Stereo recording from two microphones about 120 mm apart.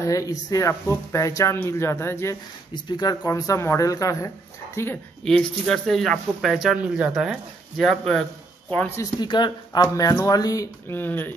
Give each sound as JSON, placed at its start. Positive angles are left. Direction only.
{"t": 0.0, "sound": "speech", "side_deg": 25}
{"t": 2.7, "sound": "speech", "side_deg": 35}
{"t": 5.2, "sound": "speech", "side_deg": 5}
{"t": 9.2, "sound": "speech", "side_deg": 35}
{"t": 10.9, "sound": "speech", "side_deg": 15}